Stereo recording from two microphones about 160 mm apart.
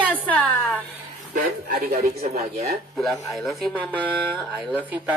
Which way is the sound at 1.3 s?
65° right (ahead or behind).